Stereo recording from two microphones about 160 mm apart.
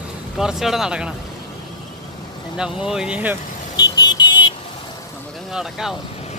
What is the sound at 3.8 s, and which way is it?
Vehicle, 25° left (ahead or behind).